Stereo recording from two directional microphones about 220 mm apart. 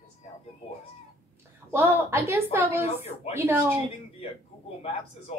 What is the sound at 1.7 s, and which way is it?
Speech, 10° right (ahead or behind).